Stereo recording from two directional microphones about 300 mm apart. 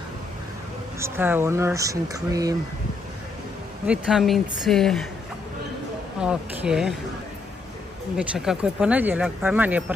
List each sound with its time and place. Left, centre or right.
0.9 s speech: centre
3.8 s speech: centre
6.2 s speech: centre
8.2 s speech: centre